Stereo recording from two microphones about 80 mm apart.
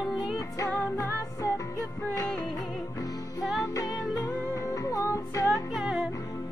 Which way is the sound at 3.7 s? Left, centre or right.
Left.